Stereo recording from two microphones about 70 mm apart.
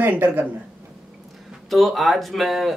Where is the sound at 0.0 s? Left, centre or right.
Right.